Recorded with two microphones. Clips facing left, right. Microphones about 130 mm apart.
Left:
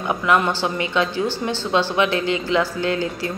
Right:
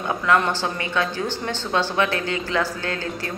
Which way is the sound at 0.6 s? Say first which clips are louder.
Left 3 dB; 15° left (ahead or behind).